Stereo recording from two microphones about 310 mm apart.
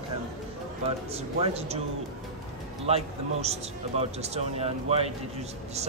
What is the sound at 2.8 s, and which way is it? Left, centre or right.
Speech, centre.